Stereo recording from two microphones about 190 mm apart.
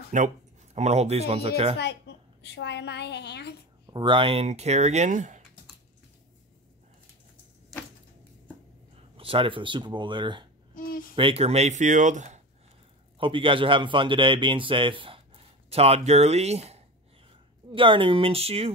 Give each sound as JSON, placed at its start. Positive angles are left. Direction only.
{"t": 0.1, "sound": "speech", "side_deg": -40}
{"t": 2.4, "sound": "a woman's voice", "side_deg": 65}
{"t": 3.8, "sound": "speech", "side_deg": -25}
{"t": 8.9, "sound": "speech", "side_deg": -30}
{"t": 10.7, "sound": "a sound", "side_deg": 45}
{"t": 11.1, "sound": "speech", "side_deg": -30}
{"t": 13.2, "sound": "a man's voice", "side_deg": -25}